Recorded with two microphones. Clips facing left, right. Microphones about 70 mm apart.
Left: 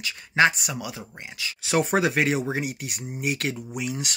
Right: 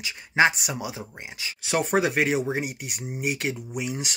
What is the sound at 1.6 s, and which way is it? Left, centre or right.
Speech, centre.